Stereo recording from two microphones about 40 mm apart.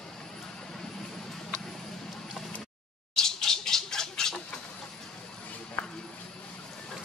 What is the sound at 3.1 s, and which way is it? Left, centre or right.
Bird, centre.